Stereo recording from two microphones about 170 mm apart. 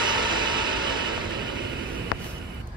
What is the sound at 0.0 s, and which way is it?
Vehicle, 25° right (ahead or behind).